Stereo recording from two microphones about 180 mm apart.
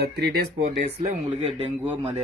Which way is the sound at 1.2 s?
30° right (ahead or behind).